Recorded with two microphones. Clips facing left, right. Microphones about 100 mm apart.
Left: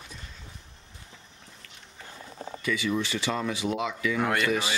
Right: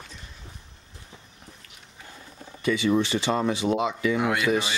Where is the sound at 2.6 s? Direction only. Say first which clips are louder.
Right 6 dB; 25° right (ahead or behind).